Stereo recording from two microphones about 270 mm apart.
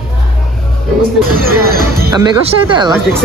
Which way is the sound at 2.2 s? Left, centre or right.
Centre.